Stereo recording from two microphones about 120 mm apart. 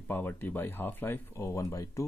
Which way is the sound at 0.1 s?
15° left (ahead or behind).